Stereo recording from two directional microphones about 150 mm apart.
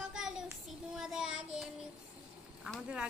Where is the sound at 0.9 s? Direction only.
5° right (ahead or behind).